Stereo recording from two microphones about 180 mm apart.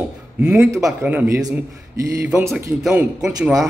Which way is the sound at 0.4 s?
5° right (ahead or behind).